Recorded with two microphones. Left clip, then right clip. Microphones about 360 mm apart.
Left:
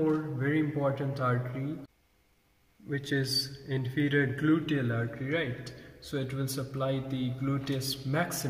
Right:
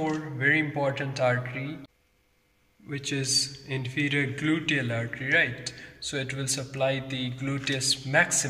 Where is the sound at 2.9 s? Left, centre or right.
Right.